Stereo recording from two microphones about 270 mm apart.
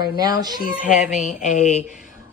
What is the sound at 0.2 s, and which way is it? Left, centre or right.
Speech, centre.